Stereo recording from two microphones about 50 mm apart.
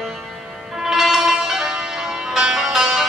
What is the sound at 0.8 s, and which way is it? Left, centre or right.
Music, centre.